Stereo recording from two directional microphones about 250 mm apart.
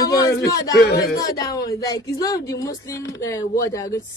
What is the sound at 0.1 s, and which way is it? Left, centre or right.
Speech, centre.